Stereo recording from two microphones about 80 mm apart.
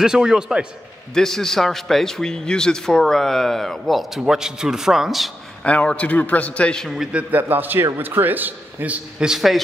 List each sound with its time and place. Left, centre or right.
0.0 s a man's voice: centre
1.1 s a man's voice: centre
5.6 s a man's voice: centre
7.1 s a man's voice: centre
9.3 s a man's voice: centre